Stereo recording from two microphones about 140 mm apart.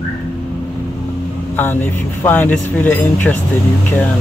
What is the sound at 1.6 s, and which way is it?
Speech, 15° left (ahead or behind).